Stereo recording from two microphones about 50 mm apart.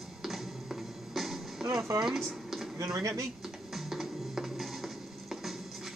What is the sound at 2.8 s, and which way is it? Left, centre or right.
Speech, right.